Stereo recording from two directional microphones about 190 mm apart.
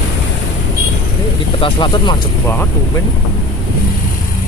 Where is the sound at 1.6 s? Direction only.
25° left (ahead or behind).